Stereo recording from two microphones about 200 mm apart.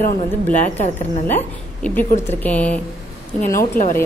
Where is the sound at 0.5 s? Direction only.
40° left (ahead or behind).